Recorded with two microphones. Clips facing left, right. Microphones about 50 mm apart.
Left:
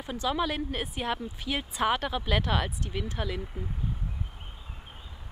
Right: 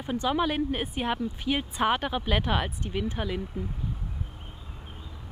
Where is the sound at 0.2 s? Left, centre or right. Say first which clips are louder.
Right 2 dB; centre.